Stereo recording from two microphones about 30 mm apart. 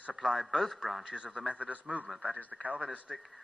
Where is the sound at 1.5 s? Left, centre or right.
Right.